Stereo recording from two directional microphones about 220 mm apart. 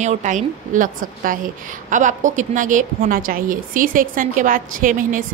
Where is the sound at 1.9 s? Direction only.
35° right (ahead or behind).